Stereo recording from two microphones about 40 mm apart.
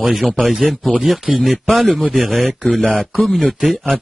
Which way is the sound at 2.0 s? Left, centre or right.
Right.